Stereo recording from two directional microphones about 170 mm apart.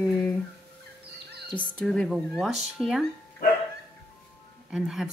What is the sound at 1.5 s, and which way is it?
Speech, 5° left (ahead or behind).